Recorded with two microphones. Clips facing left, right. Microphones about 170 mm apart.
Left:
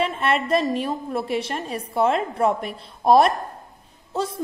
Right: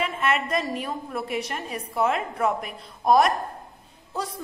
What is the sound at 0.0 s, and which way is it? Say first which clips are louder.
A woman's voice: left 3 dB; 30° left (ahead or behind).